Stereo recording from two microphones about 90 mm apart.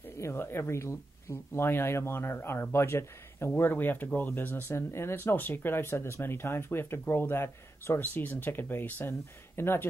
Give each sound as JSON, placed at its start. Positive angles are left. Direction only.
{"t": 0.2, "sound": "speech", "side_deg": 25}